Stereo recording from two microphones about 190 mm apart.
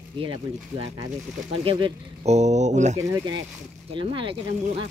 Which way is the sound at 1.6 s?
25° right (ahead or behind).